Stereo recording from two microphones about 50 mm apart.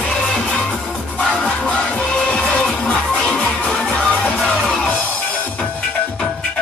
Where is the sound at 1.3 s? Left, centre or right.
Left.